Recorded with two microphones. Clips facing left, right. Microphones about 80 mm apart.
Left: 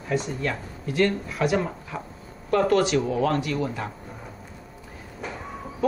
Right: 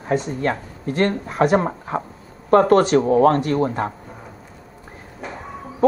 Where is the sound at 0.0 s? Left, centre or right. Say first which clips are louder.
Right 5 dB; right.